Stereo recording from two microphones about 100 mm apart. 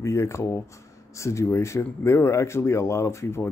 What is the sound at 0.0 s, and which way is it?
Speech, 30° left (ahead or behind).